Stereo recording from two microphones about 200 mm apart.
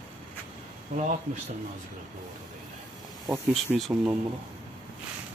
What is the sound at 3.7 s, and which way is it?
Speech, 5° right (ahead or behind).